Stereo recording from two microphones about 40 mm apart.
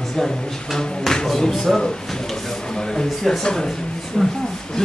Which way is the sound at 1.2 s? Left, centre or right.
Centre.